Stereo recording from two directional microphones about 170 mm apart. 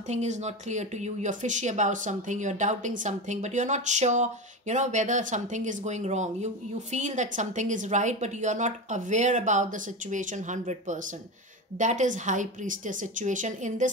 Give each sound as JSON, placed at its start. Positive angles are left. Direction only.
{"t": 0.1, "sound": "speech", "side_deg": -40}